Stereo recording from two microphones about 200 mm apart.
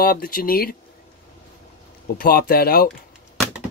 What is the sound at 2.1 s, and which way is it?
Speech, 50° left (ahead or behind).